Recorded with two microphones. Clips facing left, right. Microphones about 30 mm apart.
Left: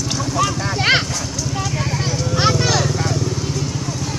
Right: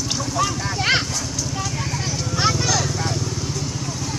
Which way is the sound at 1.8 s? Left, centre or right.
Centre.